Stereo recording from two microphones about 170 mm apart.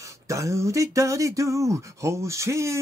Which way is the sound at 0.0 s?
15° right (ahead or behind).